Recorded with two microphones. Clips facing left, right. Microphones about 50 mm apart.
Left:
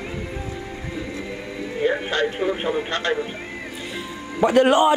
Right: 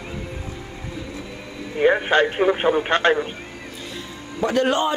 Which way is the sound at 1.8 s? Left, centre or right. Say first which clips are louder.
Right 5 dB; right.